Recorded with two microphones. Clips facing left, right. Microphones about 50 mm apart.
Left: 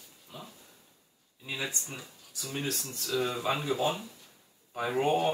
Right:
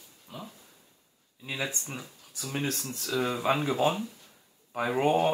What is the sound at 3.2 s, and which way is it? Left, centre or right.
Speech, centre.